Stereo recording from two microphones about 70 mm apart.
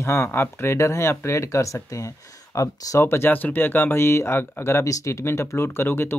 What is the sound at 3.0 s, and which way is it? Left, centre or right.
Speech, left.